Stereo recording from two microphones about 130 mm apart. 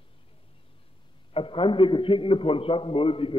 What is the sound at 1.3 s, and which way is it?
A man's voice, 40° left (ahead or behind).